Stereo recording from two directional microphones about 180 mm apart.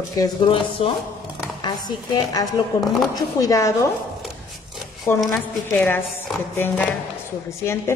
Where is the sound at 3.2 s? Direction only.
20° left (ahead or behind).